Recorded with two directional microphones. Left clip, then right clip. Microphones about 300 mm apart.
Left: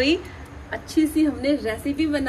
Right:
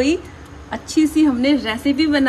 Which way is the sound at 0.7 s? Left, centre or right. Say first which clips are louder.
Right 4 dB; right.